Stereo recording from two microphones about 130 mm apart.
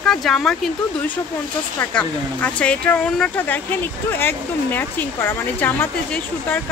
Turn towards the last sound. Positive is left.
turn(degrees=15)  # may be behind; listen again after turning